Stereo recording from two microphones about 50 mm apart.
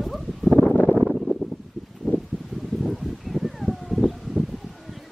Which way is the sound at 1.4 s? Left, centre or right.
Centre.